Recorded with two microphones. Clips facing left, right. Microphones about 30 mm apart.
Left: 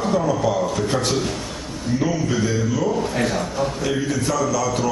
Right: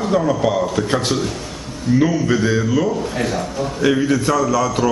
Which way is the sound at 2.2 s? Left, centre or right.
Right.